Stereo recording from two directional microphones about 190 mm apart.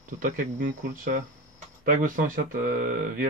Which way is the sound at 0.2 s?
45° right (ahead or behind).